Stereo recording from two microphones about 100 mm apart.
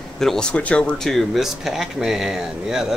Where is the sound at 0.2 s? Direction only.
5° left (ahead or behind).